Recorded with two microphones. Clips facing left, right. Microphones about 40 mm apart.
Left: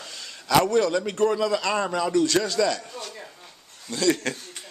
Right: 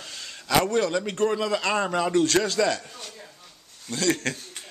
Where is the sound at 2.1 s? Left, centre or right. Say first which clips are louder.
Even; right.